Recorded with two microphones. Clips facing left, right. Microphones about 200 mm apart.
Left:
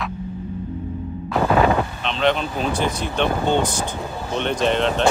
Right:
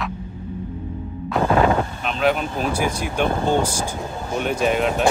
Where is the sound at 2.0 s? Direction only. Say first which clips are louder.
Even; 5° right (ahead or behind).